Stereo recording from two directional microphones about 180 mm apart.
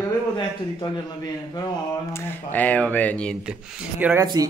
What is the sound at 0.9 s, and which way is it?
Speech, 25° left (ahead or behind).